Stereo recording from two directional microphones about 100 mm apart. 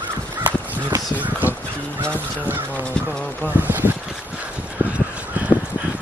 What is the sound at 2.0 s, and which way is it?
Music, 15° left (ahead or behind).